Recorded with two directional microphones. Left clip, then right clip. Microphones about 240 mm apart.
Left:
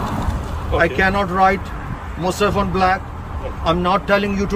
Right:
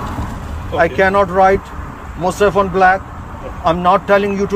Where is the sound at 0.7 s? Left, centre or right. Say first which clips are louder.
Right 4 dB; centre.